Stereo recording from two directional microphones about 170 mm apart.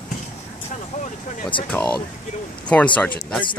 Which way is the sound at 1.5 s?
30° left (ahead or behind).